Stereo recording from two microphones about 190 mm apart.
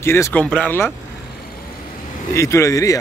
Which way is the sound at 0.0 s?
15° left (ahead or behind).